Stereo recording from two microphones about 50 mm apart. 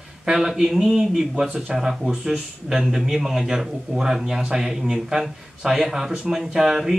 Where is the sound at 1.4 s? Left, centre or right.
Right.